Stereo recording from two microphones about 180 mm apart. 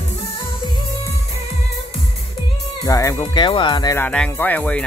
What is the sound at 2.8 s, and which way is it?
Speech, 20° left (ahead or behind).